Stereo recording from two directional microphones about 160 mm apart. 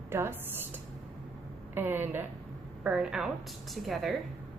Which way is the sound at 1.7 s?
15° right (ahead or behind).